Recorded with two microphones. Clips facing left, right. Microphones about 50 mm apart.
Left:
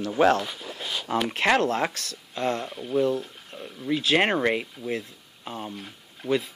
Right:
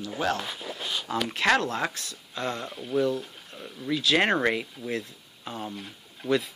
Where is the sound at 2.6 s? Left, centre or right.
Centre.